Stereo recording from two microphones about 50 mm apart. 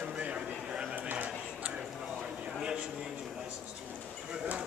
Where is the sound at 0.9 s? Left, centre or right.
Right.